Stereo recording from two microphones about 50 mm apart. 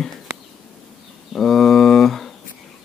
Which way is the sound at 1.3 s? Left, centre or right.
Centre.